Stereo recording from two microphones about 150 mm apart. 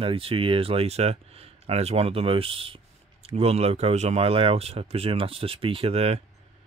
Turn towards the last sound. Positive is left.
turn(degrees=-40)  # may be behind; listen again after turning